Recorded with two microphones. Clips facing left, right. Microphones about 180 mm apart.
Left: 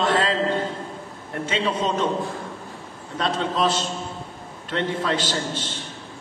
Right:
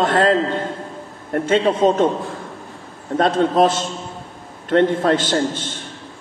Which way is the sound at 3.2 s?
50° right (ahead or behind).